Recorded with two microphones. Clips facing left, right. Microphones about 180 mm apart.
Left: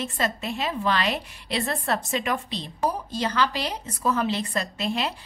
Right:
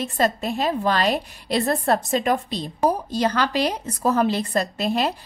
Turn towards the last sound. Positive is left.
turn(degrees=-40)  # may be behind; listen again after turning